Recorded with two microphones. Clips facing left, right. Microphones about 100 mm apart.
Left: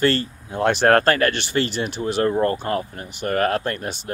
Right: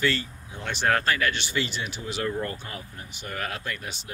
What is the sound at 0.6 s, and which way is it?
Speech, 65° left (ahead or behind).